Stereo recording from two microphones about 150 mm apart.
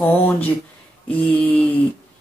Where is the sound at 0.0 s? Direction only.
10° left (ahead or behind).